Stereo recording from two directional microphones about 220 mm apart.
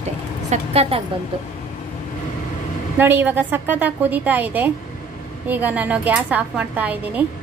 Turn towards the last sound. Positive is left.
turn(degrees=-5)  # may be behind; listen again after turning